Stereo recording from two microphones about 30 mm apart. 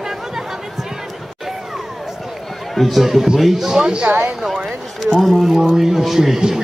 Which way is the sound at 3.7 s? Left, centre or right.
Right.